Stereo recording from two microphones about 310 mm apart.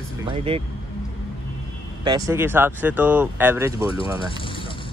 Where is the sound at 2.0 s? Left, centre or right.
Centre.